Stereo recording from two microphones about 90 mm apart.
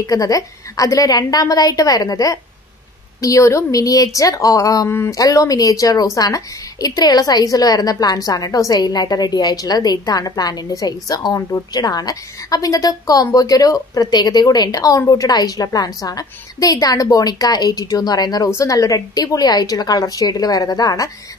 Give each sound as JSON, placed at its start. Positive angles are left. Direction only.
{"t": 0.0, "sound": "a woman's voice", "side_deg": 40}
{"t": 18.5, "sound": "a woman's voice", "side_deg": 35}